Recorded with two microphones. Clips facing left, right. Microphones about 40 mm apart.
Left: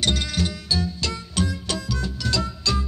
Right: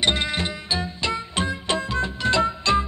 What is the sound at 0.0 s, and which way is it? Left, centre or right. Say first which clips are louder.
Music: right 2 dB; right.